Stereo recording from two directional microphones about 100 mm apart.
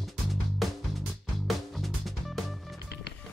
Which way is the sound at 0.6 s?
Centre (ahead or behind).